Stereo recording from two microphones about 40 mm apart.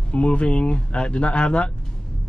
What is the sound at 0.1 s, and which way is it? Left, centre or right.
Speech, left.